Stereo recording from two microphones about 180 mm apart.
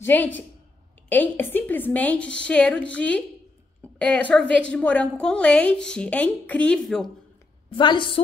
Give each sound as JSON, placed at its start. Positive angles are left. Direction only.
{"t": 0.0, "sound": "a woman's voice", "side_deg": 10}
{"t": 7.7, "sound": "a woman's voice", "side_deg": 25}